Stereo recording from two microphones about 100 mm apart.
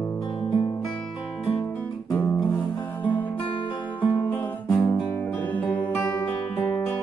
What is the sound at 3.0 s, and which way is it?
Music, 15° left (ahead or behind).